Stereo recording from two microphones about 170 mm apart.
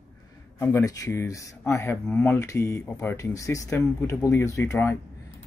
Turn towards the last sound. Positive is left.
turn(degrees=15)  # may be behind; listen again after turning